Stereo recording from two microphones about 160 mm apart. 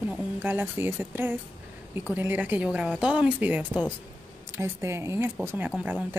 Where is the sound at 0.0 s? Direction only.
10° right (ahead or behind).